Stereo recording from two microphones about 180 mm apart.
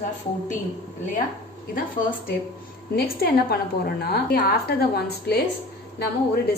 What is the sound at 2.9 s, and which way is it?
A woman's voice, 55° left (ahead or behind).